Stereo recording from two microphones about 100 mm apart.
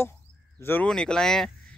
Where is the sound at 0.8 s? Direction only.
5° left (ahead or behind).